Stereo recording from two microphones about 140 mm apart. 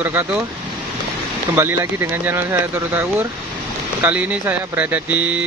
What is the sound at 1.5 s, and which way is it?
Speech, 15° right (ahead or behind).